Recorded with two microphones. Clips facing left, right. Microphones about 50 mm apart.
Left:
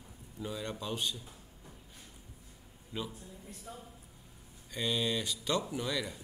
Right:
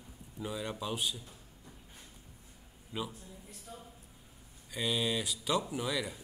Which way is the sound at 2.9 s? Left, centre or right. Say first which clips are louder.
Right 1 dB; centre.